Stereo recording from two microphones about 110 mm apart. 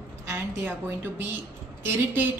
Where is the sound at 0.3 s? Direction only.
20° right (ahead or behind).